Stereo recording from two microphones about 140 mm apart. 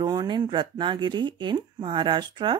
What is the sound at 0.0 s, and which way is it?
Speech, 30° right (ahead or behind).